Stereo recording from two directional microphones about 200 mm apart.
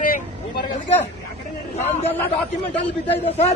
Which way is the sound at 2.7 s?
30° left (ahead or behind).